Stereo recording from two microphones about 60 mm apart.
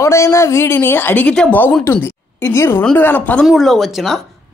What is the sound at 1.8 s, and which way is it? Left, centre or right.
Speech, left.